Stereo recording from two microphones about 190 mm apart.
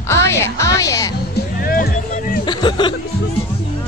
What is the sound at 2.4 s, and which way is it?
Speech, 25° left (ahead or behind).